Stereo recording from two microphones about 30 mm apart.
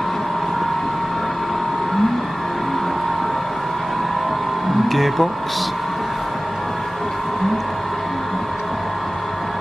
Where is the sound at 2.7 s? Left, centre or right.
Centre.